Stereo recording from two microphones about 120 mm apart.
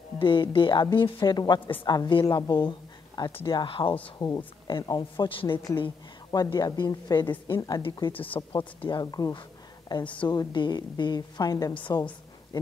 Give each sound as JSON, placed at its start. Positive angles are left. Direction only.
{"t": 0.2, "sound": "a woman's voice", "side_deg": 45}
{"t": 8.1, "sound": "speech", "side_deg": 15}
{"t": 8.4, "sound": "a woman's voice", "side_deg": 40}